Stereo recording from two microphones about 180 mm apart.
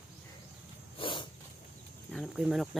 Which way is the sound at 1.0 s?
25° left (ahead or behind).